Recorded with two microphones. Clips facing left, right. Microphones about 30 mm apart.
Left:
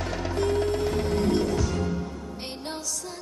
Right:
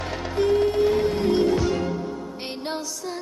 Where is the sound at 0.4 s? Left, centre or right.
Centre.